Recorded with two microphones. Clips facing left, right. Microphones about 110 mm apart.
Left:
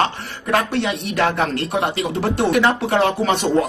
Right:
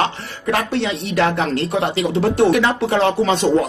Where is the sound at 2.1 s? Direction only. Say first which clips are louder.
Right 6 dB; 60° left (ahead or behind).